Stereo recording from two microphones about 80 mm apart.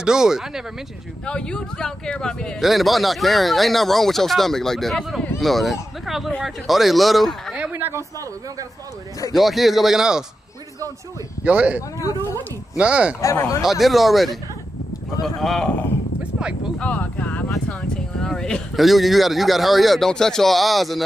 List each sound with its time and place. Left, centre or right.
0.0 s speech: centre
1.2 s speech: centre
7.5 s a sound: centre
9.3 s speech: centre
11.4 s speech: centre
12.0 s speech: left
12.7 s speech: centre
13.7 s speech: centre
16.2 s a sound: centre
16.8 s speech: centre
17.6 s speech: centre